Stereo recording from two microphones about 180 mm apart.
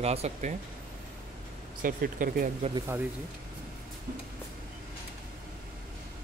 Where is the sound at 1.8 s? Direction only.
50° right (ahead or behind).